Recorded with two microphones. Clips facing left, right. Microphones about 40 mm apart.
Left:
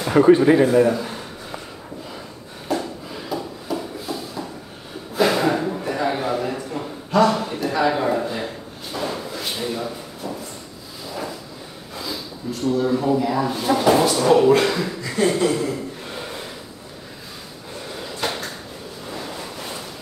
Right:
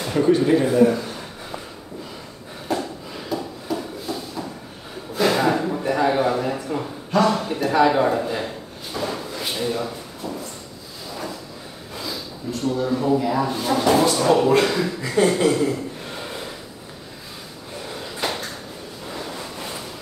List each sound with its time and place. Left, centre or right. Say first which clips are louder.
0.1 s speech: left 4 dB; left
2.7 s a sound: left 1 dB; centre
7.5 s speech: right 3 dB; centre
8.1 s drawer open or close: even; centre
11.9 s snort: left 1 dB; centre
12.6 s speech: left 2 dB; centre
15.3 s a sound: right 1 dB; centre
17.8 s a sound: even; centre
19.1 s waves: even; centre